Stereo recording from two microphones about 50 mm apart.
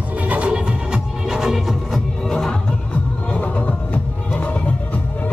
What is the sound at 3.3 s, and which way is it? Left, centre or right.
Music, left.